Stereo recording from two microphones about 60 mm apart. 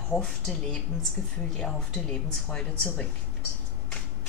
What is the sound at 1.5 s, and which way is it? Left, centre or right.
A woman's voice, centre.